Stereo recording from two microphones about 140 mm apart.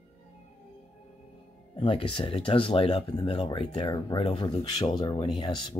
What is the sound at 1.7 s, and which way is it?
Speech, 40° left (ahead or behind).